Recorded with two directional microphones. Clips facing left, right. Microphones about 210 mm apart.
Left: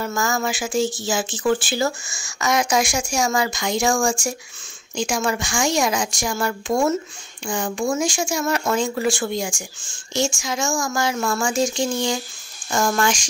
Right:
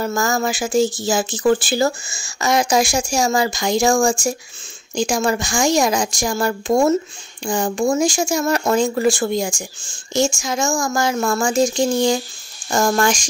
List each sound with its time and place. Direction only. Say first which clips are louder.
0.0 s speech: right 3 dB; 40° right (ahead or behind)